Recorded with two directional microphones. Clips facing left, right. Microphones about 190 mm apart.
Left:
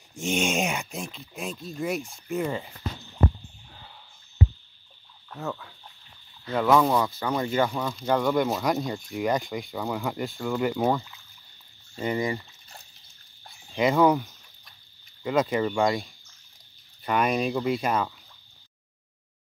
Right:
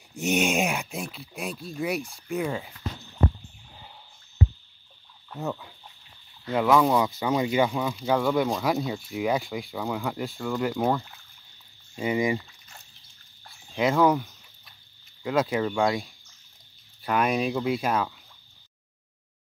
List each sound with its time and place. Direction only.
0.4 s a sound: centre (ahead or behind)
1.3 s speech: centre (ahead or behind)
4.4 s rowboat: 20° left (ahead or behind)
5.3 s speech: 15° right (ahead or behind)
6.4 s speech: 5° right (ahead or behind)
7.1 s speech: 15° right (ahead or behind); by 11.1 s centre (ahead or behind)
11.9 s speech: 10° right (ahead or behind)
13.5 s a sound: centre (ahead or behind)
15.2 s speech: centre (ahead or behind)